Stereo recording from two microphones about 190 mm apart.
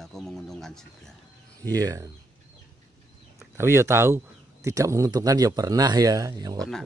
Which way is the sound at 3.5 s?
15° right (ahead or behind).